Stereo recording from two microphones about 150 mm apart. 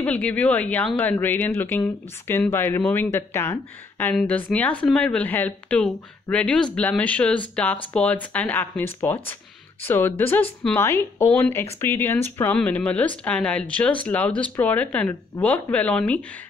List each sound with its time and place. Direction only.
0.0 s speech: 10° left (ahead or behind)